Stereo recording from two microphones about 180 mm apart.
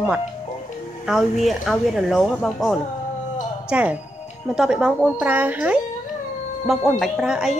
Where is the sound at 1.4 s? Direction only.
Centre (ahead or behind).